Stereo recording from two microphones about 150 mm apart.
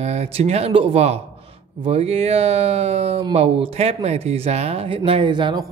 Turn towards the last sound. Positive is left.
turn(degrees=-30)  # may be behind; listen again after turning